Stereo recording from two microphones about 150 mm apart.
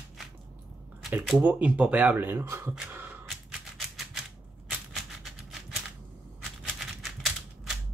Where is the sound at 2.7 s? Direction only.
10° right (ahead or behind).